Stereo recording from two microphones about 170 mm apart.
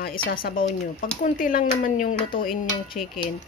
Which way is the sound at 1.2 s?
50° left (ahead or behind).